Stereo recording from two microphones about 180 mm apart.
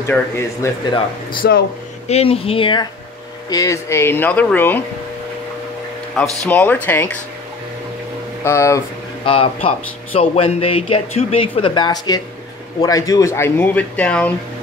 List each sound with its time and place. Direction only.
0.0 s speech: 15° left (ahead or behind)
1.4 s speech: 65° left (ahead or behind)
2.0 s speech: 35° left (ahead or behind); by 4.8 s 10° left (ahead or behind)
6.1 s speech: 5° left (ahead or behind)
8.5 s speech: 15° left (ahead or behind)
9.2 s speech: 30° left (ahead or behind); by 14.3 s 5° left (ahead or behind)